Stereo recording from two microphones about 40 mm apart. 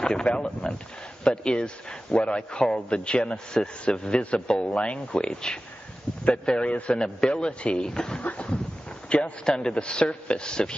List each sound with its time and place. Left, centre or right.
0.0 s a man's voice: left
8.2 s a sound: left
9.1 s a man's voice: left